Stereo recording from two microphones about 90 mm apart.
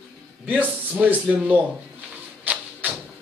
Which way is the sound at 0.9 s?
15° right (ahead or behind).